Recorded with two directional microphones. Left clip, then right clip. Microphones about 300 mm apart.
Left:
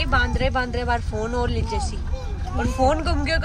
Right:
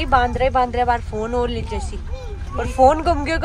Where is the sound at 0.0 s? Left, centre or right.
Centre.